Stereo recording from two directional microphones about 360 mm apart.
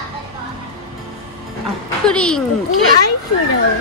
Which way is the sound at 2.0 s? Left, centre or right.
Centre.